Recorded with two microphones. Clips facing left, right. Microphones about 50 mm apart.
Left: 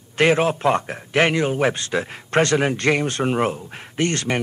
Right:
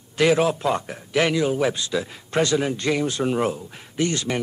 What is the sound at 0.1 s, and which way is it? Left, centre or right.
Speech, left.